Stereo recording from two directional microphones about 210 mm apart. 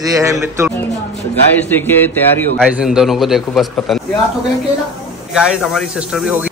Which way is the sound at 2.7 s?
5° right (ahead or behind).